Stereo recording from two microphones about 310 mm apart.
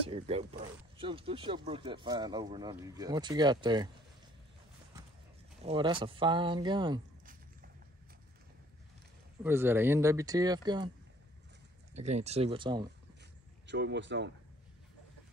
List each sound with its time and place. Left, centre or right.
0.0 s speech: centre
5.6 s speech: centre
9.4 s speech: centre
11.9 s speech: right
13.7 s speech: right